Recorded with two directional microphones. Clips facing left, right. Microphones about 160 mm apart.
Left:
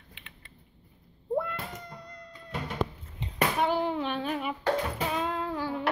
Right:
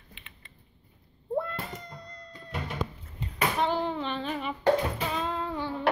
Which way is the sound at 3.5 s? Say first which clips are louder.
Left 1 dB; 10° left (ahead or behind).